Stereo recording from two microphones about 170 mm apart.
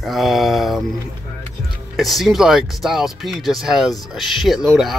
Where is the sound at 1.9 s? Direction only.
Centre (ahead or behind).